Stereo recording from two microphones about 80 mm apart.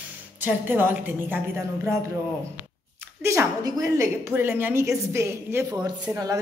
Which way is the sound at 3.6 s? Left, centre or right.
Right.